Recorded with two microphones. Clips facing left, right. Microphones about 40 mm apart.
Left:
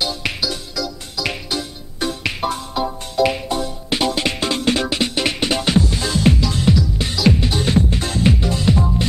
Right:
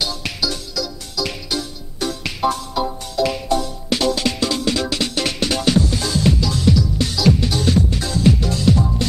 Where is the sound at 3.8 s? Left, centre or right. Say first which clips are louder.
Right 1 dB; left.